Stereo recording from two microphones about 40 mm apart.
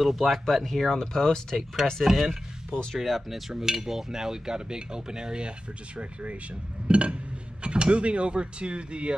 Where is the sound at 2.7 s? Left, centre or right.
Left.